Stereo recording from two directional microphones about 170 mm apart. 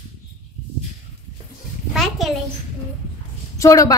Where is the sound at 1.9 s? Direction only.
Centre (ahead or behind).